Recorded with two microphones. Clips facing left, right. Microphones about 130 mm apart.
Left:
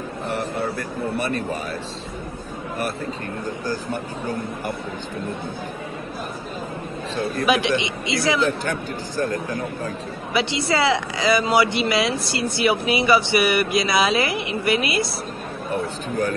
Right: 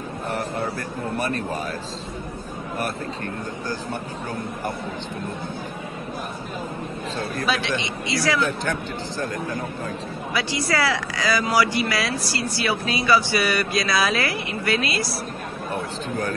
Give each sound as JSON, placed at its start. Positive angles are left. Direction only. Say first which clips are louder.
{"t": 7.4, "sound": "a man's voice", "louder": "left 6 dB", "side_deg": 15}
{"t": 10.3, "sound": "speech", "louder": "left 3 dB", "side_deg": 25}